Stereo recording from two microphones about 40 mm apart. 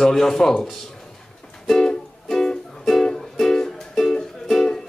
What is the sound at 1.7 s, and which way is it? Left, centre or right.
Music, centre.